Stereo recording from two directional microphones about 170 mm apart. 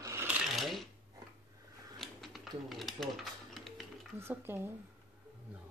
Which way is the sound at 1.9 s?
Centre (ahead or behind).